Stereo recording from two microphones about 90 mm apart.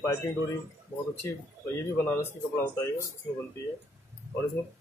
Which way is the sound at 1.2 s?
30° left (ahead or behind).